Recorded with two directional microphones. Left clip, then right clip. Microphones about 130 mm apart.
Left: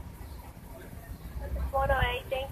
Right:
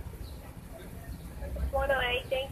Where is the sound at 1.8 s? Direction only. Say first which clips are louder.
Even; 15° left (ahead or behind).